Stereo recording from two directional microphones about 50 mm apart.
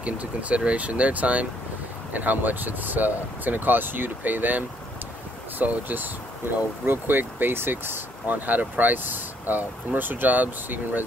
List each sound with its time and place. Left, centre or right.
0.0 s speech: right